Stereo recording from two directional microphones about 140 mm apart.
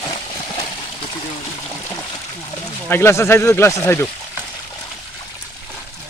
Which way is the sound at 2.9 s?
20° left (ahead or behind).